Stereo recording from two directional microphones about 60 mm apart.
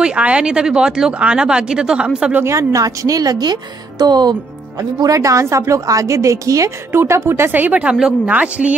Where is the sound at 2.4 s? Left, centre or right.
Right.